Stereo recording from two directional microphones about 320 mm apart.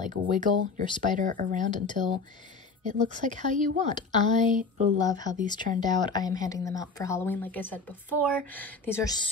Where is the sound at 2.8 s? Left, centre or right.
Right.